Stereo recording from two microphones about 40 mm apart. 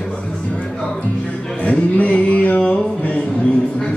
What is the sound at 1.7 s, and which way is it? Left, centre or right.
Mantra, left.